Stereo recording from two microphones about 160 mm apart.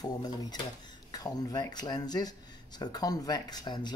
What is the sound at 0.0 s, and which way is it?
Speech, 25° left (ahead or behind).